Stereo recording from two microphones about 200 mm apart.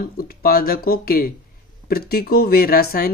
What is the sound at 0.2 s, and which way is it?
Speech, 45° left (ahead or behind).